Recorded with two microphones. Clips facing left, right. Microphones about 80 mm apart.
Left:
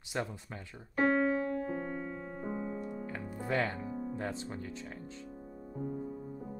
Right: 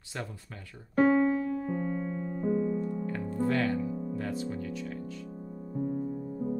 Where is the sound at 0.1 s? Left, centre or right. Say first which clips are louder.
Left 3 dB; left.